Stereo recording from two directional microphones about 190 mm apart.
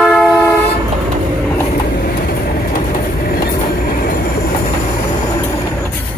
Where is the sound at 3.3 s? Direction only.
50° left (ahead or behind).